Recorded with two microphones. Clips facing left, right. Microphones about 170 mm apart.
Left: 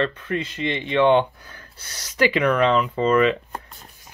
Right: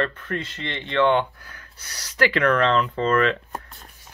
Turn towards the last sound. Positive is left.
turn(degrees=15)  # may be behind; listen again after turning